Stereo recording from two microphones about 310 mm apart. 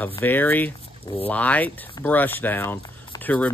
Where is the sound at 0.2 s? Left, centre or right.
Centre.